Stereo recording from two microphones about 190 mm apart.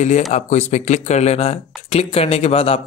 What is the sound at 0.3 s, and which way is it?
Speech, 35° left (ahead or behind).